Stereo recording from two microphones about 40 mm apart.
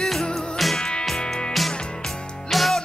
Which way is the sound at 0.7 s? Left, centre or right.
Left.